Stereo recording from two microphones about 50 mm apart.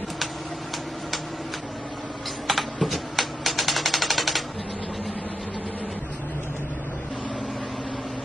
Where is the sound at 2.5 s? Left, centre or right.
Centre.